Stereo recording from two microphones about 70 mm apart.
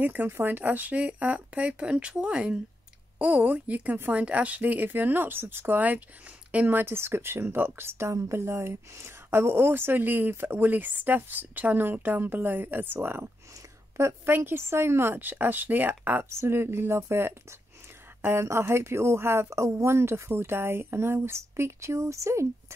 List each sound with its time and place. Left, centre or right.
0.0 s speech: right
16.3 s speech: right